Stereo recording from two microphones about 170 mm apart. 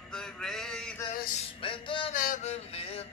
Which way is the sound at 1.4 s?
30° left (ahead or behind).